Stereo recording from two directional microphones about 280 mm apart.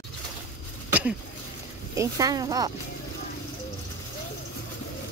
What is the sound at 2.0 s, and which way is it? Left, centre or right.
Speech, centre.